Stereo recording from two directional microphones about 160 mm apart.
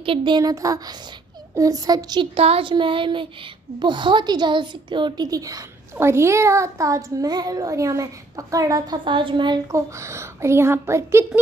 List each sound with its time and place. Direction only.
0.0 s a woman's voice: 30° right (ahead or behind)
2.3 s a woman's voice: 40° right (ahead or behind); by 11.2 s 15° right (ahead or behind)